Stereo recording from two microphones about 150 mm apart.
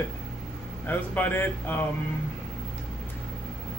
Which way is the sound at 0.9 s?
15° left (ahead or behind).